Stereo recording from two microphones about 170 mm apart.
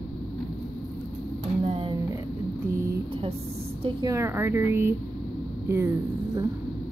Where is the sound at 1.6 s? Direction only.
35° right (ahead or behind).